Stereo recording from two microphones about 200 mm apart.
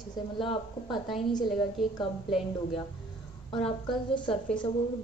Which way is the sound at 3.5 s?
25° left (ahead or behind).